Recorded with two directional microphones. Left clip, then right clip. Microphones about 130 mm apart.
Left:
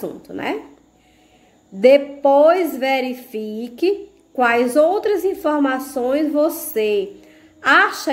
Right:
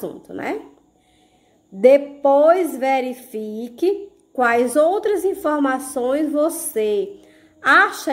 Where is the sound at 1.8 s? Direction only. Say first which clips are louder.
Left 1 dB; 25° right (ahead or behind).